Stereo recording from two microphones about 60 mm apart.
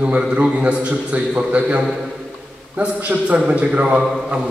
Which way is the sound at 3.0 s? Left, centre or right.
Right.